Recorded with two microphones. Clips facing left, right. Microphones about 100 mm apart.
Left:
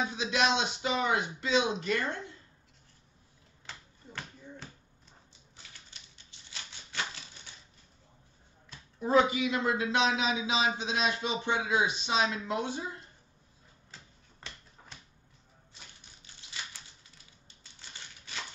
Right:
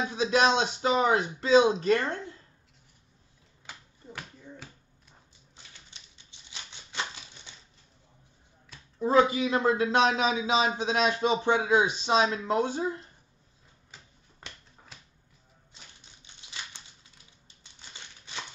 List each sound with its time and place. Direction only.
0.1 s a man's voice: 35° right (ahead or behind)
3.6 s finger snapping: 10° right (ahead or behind)
9.0 s a man's voice: 35° right (ahead or behind)
14.9 s music: centre (ahead or behind)
16.3 s a sound: 20° right (ahead or behind)